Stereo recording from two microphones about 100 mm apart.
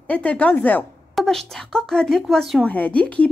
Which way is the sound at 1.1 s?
5° left (ahead or behind).